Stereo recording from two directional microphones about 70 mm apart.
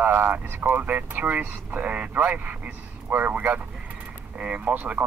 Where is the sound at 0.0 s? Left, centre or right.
Right.